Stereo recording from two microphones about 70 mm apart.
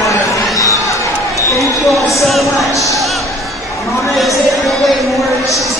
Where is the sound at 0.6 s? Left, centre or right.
Left.